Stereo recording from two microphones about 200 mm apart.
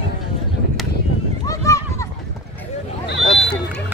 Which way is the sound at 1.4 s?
15° left (ahead or behind).